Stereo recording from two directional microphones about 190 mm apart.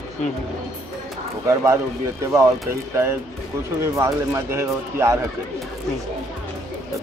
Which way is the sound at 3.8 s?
15° right (ahead or behind).